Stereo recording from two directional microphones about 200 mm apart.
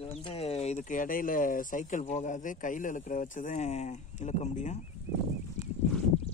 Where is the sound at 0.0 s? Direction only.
30° left (ahead or behind).